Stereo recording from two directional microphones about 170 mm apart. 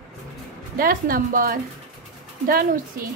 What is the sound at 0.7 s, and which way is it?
Speech, 55° right (ahead or behind).